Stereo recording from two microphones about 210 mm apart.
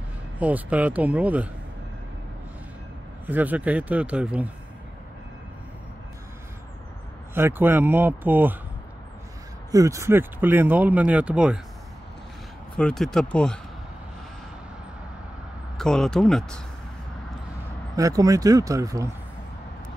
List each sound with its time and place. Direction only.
0.4 s speech: 5° right (ahead or behind)
3.3 s speech: 10° right (ahead or behind)
7.3 s speech: 10° right (ahead or behind)
9.7 s speech: 15° right (ahead or behind)
12.7 s speech: 5° left (ahead or behind)
15.8 s speech: centre (ahead or behind)
17.9 s speech: 15° right (ahead or behind)